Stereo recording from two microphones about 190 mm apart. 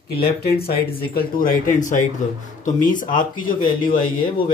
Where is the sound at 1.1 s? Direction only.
45° left (ahead or behind).